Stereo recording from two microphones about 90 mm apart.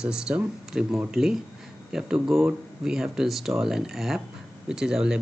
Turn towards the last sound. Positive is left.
turn(degrees=-10)  # may be behind; listen again after turning